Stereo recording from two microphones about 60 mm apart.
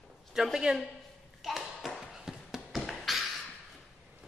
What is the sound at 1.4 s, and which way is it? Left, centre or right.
Tap, centre.